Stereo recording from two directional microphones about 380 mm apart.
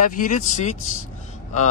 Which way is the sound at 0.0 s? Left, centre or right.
Centre.